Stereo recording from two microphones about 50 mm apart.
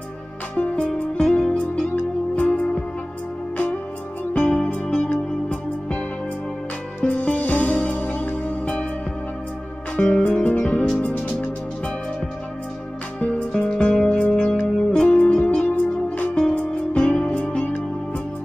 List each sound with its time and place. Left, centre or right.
0.6 s music: left
4.3 s music: left
7.1 s music: left
9.9 s music: left
13.7 s music: centre